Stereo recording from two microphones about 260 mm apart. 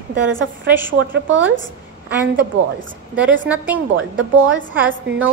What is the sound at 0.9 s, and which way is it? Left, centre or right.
Speech, right.